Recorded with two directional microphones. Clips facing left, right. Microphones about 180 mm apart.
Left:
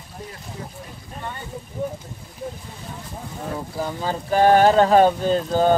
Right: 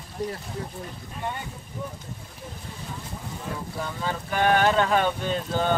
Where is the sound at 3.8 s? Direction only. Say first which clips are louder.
Left 6 dB; 35° left (ahead or behind).